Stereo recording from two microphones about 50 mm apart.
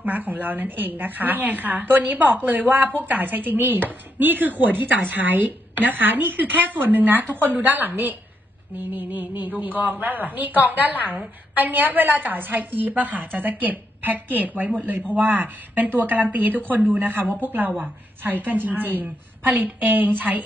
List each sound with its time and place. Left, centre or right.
0.0 s a woman's voice: right